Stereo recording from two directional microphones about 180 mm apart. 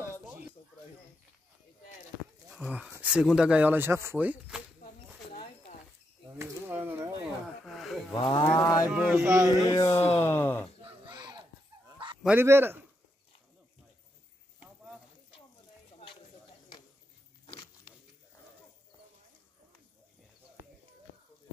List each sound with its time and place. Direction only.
2.5 s speech: 10° right (ahead or behind)
6.2 s a sound: 15° right (ahead or behind)
7.6 s a sound: centre (ahead or behind)
8.1 s livestock: 25° left (ahead or behind)
8.5 s music: 20° left (ahead or behind)
8.8 s speech: 10° right (ahead or behind)
9.7 s music: 20° left (ahead or behind)
10.2 s speech: 10° left (ahead or behind)
10.8 s a sound: 25° right (ahead or behind)
12.2 s speech: 10° right (ahead or behind)